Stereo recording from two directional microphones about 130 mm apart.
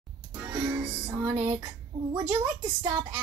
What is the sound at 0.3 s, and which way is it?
Music, 20° right (ahead or behind).